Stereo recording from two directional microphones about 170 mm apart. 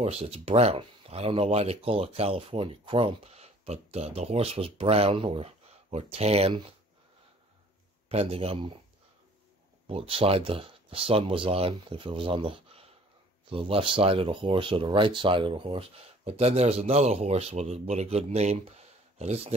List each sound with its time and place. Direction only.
0.0 s speech: 35° right (ahead or behind)
8.1 s speech: 35° right (ahead or behind)
9.8 s speech: 35° right (ahead or behind)